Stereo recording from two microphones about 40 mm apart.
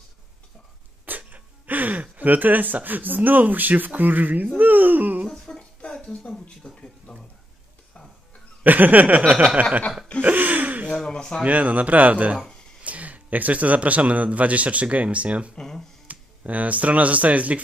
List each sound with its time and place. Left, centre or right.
1.0 s speech: right
5.5 s a sound: centre
6.6 s speech: centre
8.6 s speech: right
10.2 s a sound: right
11.1 s speech: left
11.4 s a man's voice: right
15.5 s speech: centre
16.1 s speech: right